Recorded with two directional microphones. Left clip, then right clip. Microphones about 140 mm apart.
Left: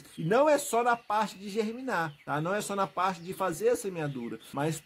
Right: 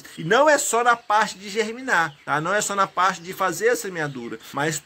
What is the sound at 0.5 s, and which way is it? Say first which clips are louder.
Speech: right 8 dB; 10° left (ahead or behind).